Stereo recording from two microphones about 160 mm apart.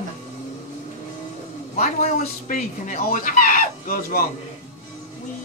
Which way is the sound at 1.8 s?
45° left (ahead or behind).